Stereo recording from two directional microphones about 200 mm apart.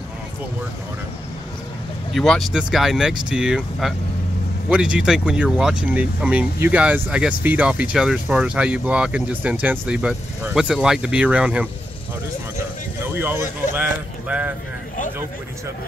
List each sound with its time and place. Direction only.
2.1 s speech: centre (ahead or behind)
13.0 s a sound: 10° right (ahead or behind)
13.7 s speech: 5° right (ahead or behind)